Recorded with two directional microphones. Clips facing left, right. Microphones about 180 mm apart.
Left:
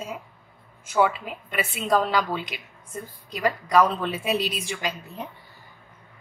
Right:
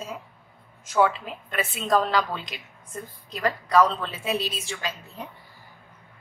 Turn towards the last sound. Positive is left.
turn(degrees=15)  # may be behind; listen again after turning